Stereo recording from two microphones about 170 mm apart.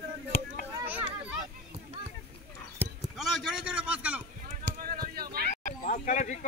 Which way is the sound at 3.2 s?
Centre (ahead or behind).